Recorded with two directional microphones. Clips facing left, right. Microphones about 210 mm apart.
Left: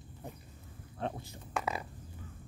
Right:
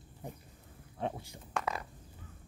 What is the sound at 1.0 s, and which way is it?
Speech, 15° right (ahead or behind).